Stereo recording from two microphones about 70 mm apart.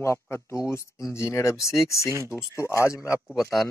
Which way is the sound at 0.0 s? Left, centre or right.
Left.